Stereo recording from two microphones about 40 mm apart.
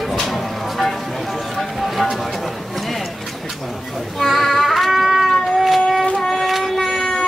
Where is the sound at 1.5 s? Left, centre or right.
Centre.